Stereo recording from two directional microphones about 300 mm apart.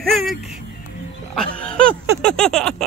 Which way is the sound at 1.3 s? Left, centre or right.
Centre.